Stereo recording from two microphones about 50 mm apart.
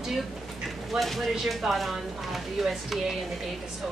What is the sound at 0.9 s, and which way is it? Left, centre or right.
Speech, centre.